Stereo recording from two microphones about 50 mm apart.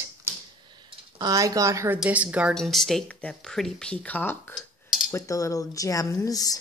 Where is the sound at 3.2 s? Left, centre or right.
Left.